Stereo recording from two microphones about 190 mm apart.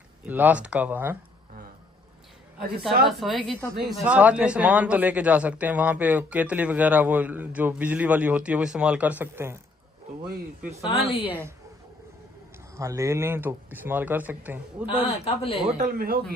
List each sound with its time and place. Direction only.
0.3 s a man's voice: 10° right (ahead or behind)
3.1 s a man's voice: centre (ahead or behind)
10.9 s a man's voice: 30° left (ahead or behind)
11.2 s a man's voice: 10° right (ahead or behind)
12.7 s a man's voice: 15° right (ahead or behind)
15.0 s a man's voice: 30° left (ahead or behind)
15.8 s speech: 50° right (ahead or behind)